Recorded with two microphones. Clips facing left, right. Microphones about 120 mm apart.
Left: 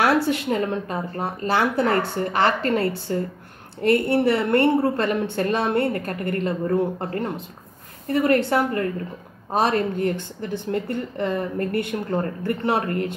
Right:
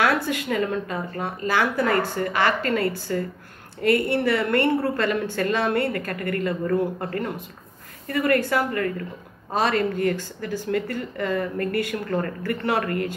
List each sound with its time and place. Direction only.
0.3 s a woman's voice: 25° left (ahead or behind)